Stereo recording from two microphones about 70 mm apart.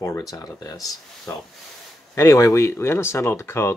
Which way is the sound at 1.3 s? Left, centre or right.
Left.